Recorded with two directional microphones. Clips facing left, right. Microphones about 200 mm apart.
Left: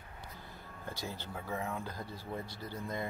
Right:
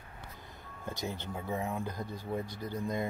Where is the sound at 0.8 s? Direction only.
20° right (ahead or behind).